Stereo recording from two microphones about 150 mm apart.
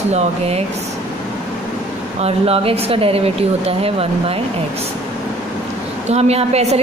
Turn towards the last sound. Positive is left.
turn(degrees=-45)  # may be behind; listen again after turning